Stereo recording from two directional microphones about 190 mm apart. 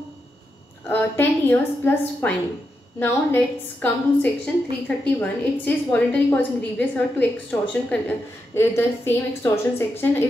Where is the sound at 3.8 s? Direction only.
10° left (ahead or behind).